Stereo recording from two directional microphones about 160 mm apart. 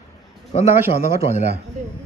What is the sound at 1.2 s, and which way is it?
Speech, 45° left (ahead or behind).